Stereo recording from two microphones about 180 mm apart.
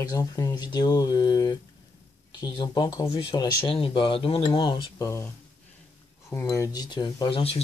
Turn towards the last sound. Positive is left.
turn(degrees=30)  # may be behind; listen again after turning